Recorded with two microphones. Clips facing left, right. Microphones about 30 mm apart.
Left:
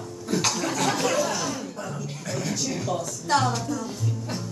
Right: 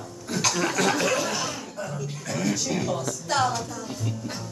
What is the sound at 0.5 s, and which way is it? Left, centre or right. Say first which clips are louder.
Speech: right 2 dB; centre.